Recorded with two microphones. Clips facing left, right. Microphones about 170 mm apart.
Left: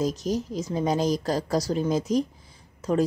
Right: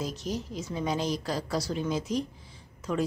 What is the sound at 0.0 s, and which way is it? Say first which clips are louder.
Speech: left 7 dB; 40° left (ahead or behind).